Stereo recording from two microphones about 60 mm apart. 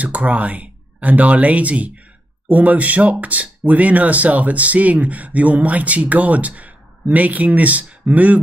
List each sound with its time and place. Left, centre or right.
0.0 s speech: right